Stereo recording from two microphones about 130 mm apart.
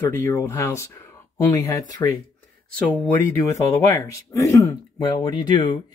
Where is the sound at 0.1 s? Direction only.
20° left (ahead or behind).